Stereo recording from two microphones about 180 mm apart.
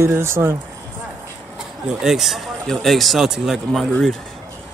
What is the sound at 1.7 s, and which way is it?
Speech, 5° right (ahead or behind).